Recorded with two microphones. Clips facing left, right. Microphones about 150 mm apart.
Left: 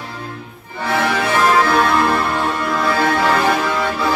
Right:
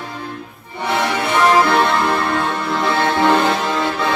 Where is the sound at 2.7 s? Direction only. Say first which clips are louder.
Even; 25° right (ahead or behind).